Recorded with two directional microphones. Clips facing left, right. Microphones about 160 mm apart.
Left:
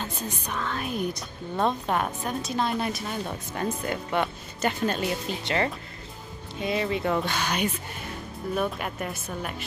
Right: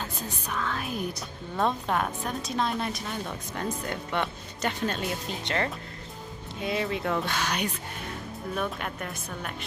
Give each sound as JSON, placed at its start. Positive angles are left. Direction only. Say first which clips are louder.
{"t": 0.0, "sound": "a woman's voice", "louder": "left 2 dB", "side_deg": 0}